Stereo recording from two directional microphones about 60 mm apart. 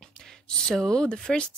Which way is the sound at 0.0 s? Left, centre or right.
Centre.